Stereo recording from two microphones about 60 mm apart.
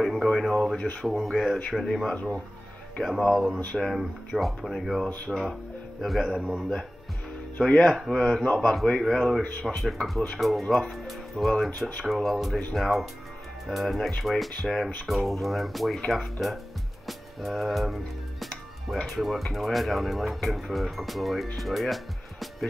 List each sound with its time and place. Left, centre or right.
0.0 s radio: centre
1.0 s speech: centre
3.3 s speech: centre
9.4 s speech: centre
10.4 s speech: centre
21.5 s music: centre